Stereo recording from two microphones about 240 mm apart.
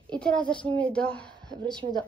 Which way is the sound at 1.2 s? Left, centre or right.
Centre.